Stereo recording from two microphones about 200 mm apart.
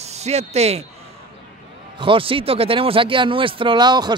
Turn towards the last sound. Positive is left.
turn(degrees=-20)  # may be behind; listen again after turning